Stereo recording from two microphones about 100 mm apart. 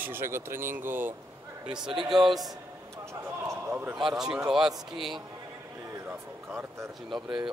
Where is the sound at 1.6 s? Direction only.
5° right (ahead or behind).